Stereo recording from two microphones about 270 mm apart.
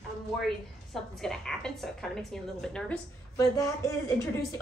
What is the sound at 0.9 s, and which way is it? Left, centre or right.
A woman's voice, centre.